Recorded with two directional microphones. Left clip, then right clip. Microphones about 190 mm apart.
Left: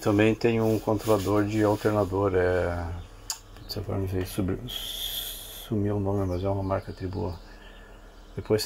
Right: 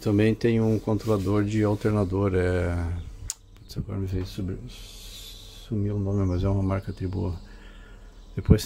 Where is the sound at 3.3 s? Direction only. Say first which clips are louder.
Left 4 dB; 25° right (ahead or behind).